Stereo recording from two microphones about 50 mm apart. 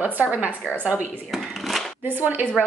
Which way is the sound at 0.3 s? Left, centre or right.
Right.